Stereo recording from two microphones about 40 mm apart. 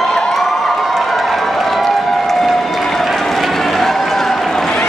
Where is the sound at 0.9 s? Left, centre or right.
Centre.